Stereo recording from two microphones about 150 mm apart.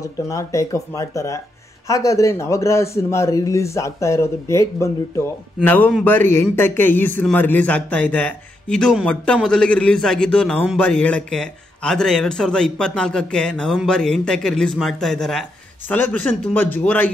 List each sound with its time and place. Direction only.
0.0 s a man's voice: 20° left (ahead or behind)